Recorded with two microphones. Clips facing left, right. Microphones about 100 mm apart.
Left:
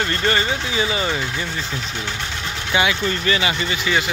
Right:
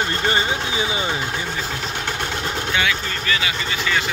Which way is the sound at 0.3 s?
15° right (ahead or behind).